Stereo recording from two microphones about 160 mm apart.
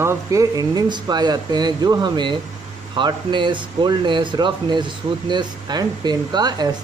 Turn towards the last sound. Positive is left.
turn(degrees=-25)  # may be behind; listen again after turning